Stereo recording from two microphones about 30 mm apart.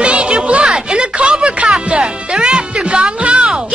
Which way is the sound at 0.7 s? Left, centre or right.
Right.